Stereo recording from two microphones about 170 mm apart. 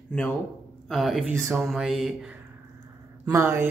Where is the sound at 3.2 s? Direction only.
15° right (ahead or behind).